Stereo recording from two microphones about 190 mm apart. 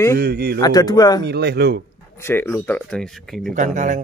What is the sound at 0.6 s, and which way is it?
Speech, 20° left (ahead or behind).